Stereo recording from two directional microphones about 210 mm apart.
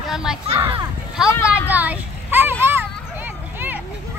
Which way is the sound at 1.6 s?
5° right (ahead or behind).